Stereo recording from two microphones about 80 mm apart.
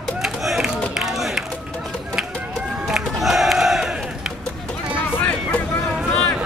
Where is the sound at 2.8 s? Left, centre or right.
Centre.